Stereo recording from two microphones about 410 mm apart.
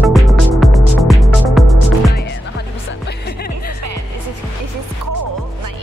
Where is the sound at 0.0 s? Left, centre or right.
Centre.